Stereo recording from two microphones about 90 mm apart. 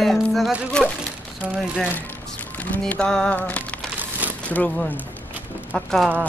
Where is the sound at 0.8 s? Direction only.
10° left (ahead or behind).